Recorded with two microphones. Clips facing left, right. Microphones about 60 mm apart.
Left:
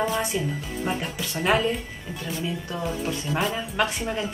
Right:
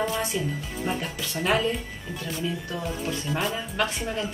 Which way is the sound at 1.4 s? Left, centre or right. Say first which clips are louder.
Left 2 dB; centre.